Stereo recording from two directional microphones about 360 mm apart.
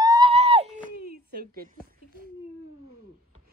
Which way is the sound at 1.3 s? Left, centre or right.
Right.